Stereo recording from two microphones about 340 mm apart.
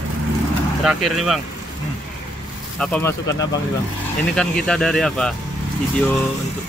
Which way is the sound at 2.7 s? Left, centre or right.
Centre.